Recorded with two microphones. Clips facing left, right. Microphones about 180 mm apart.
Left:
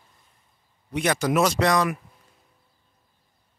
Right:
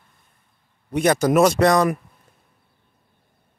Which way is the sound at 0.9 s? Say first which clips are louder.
Right 6 dB; 40° right (ahead or behind).